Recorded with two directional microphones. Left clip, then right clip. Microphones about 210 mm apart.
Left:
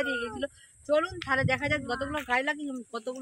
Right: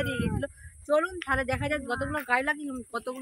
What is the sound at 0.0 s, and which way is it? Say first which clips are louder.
A man's voice: left 1 dB; centre (ahead or behind).